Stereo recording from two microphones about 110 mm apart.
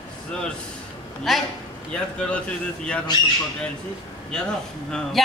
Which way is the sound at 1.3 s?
Centre (ahead or behind).